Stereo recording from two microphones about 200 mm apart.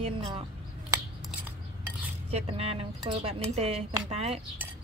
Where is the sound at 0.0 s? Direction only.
30° right (ahead or behind).